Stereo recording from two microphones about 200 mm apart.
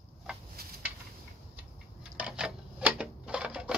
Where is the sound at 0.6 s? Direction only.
50° right (ahead or behind).